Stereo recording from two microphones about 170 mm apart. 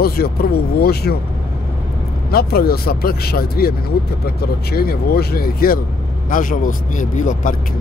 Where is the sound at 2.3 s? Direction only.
65° left (ahead or behind).